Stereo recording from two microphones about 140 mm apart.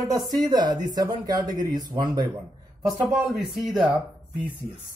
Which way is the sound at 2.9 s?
Centre (ahead or behind).